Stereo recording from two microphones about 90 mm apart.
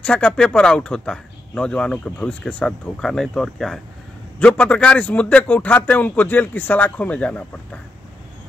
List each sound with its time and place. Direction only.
0.0 s speech: 10° left (ahead or behind)